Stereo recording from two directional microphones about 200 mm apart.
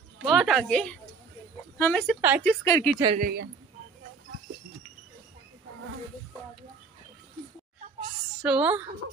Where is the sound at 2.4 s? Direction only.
10° left (ahead or behind).